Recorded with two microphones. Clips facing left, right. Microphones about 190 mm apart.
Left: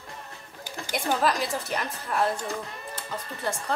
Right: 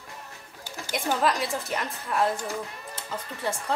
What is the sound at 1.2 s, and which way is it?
A woman's voice, centre (ahead or behind).